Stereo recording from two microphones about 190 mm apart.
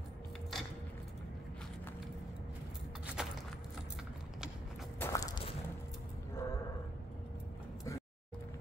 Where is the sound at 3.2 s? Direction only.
5° right (ahead or behind).